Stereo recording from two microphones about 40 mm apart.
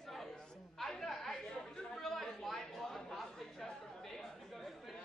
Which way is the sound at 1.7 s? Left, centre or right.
Centre.